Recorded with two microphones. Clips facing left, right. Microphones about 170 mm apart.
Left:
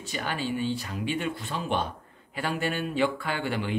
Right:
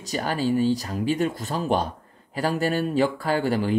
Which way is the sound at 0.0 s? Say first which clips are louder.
Right 6 dB; 40° right (ahead or behind).